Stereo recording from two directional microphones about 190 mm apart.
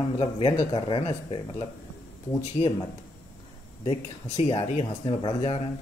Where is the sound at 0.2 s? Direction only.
25° left (ahead or behind).